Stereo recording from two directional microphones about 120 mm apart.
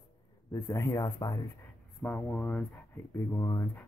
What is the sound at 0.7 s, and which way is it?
Speech, 25° left (ahead or behind).